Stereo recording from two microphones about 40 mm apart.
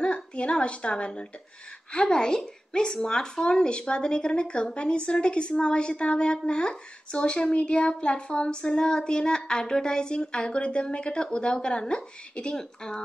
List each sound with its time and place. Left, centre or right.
0.0 s a woman's voice: left